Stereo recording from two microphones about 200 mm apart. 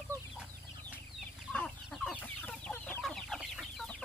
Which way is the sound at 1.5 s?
5° left (ahead or behind).